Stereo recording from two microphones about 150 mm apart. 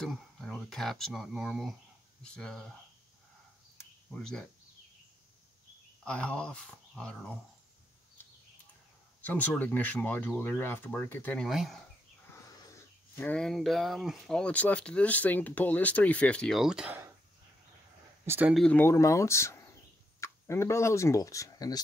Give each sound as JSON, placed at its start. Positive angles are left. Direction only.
{"t": 0.0, "sound": "speech", "side_deg": 0}
{"t": 6.0, "sound": "speech", "side_deg": 10}
{"t": 9.2, "sound": "speech", "side_deg": 10}
{"t": 11.4, "sound": "speech", "side_deg": 0}
{"t": 12.6, "sound": "speech", "side_deg": 20}
{"t": 18.2, "sound": "speech", "side_deg": -15}
{"t": 18.5, "sound": "speech", "side_deg": 5}
{"t": 18.8, "sound": "speech", "side_deg": 20}